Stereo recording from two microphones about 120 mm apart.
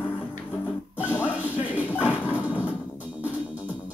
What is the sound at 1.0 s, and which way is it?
Music, 10° right (ahead or behind).